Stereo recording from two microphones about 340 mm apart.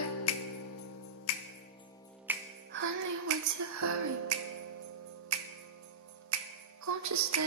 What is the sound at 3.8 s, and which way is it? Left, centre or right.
Music, right.